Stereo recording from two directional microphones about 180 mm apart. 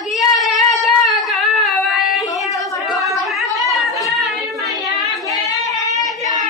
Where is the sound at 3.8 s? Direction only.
Centre (ahead or behind).